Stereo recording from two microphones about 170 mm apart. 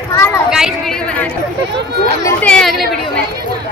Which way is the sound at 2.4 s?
5° left (ahead or behind).